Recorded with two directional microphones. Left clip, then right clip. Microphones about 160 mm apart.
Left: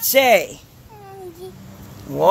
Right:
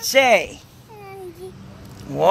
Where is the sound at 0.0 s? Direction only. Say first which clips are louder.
Left 1 dB; 35° left (ahead or behind).